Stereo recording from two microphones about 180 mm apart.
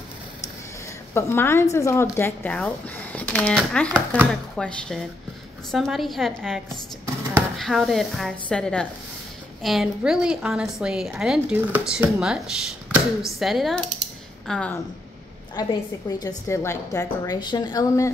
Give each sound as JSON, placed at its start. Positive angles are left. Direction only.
{"t": 1.1, "sound": "speech", "side_deg": 15}
{"t": 15.6, "sound": "a woman's voice", "side_deg": 20}